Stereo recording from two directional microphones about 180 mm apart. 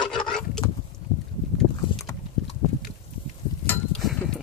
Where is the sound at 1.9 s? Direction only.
30° left (ahead or behind).